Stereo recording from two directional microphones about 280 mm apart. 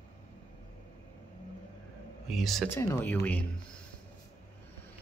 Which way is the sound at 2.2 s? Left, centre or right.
Centre.